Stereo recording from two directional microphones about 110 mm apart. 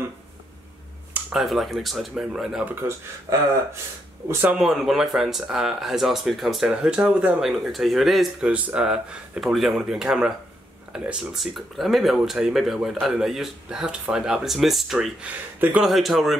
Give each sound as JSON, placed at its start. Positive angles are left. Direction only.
{"t": 1.3, "sound": "speech", "side_deg": 0}
{"t": 2.8, "sound": "speech", "side_deg": -15}
{"t": 3.3, "sound": "speech", "side_deg": -30}
{"t": 4.6, "sound": "speech", "side_deg": -5}